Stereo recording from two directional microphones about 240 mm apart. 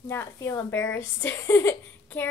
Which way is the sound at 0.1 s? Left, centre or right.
Centre.